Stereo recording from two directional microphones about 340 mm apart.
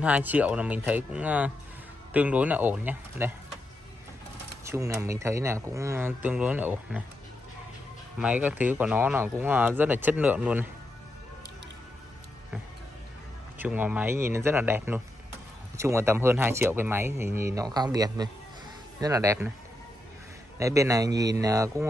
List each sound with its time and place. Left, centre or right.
0.0 s speech: centre
4.6 s speech: centre
8.2 s speech: centre
13.6 s speech: centre
20.5 s speech: centre